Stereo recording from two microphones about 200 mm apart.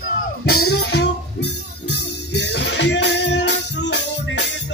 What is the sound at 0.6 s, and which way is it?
Music, 55° left (ahead or behind).